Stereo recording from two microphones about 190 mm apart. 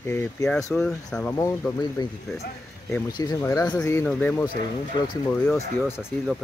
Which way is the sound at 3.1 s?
20° left (ahead or behind).